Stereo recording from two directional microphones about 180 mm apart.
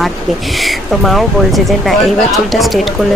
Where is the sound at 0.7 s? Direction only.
Centre (ahead or behind).